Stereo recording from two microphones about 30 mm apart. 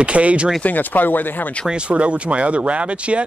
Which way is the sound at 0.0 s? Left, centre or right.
Right.